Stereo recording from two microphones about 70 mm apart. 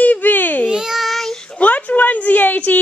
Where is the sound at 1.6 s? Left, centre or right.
Left.